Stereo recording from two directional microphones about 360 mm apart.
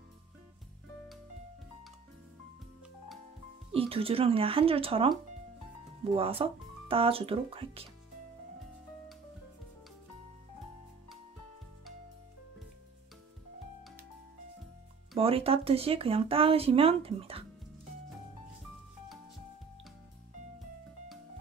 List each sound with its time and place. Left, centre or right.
3.7 s speech: centre
15.1 s speech: centre